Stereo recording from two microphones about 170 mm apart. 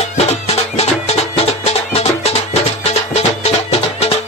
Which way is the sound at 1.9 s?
40° left (ahead or behind).